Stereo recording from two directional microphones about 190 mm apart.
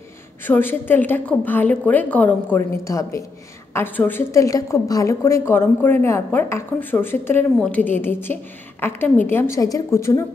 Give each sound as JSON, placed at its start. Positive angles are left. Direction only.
{"t": 0.5, "sound": "a woman's voice", "side_deg": 10}